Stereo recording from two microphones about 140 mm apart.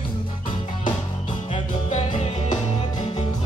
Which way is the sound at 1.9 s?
55° left (ahead or behind).